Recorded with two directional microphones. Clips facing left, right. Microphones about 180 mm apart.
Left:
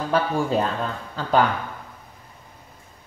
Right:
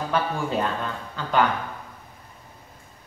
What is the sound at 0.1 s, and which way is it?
Speech, 35° left (ahead or behind).